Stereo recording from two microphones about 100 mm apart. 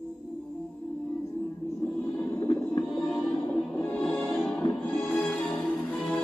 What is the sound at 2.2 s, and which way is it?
Music, 20° left (ahead or behind).